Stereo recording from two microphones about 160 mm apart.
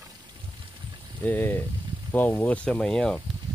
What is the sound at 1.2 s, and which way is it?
Speech, 15° left (ahead or behind).